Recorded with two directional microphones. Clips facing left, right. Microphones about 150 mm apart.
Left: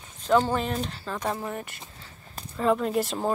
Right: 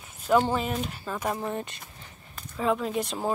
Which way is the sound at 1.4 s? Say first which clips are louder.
Right 2 dB; 20° right (ahead or behind).